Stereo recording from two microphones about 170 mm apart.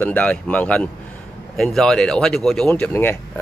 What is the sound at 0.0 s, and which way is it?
Speech, 10° left (ahead or behind).